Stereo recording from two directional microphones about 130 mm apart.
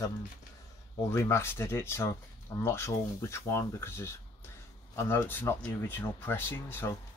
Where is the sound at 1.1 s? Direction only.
20° left (ahead or behind).